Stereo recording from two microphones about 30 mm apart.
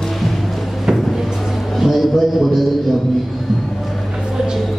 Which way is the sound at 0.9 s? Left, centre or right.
Centre.